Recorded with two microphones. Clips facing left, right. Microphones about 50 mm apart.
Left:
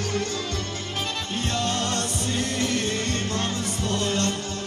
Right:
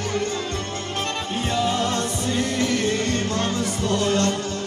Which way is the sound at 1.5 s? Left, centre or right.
Centre.